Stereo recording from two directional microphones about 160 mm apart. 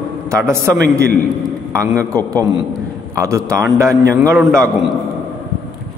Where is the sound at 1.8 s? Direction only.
20° right (ahead or behind).